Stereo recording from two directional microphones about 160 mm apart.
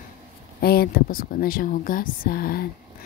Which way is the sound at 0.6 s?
70° left (ahead or behind).